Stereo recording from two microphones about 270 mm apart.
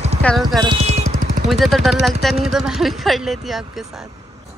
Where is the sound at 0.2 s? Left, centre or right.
Centre.